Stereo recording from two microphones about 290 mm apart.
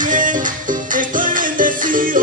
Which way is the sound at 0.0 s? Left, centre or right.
Right.